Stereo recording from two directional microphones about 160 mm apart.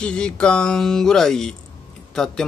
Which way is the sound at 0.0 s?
5° left (ahead or behind).